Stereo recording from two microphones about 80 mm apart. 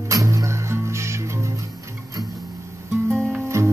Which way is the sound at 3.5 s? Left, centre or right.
Right.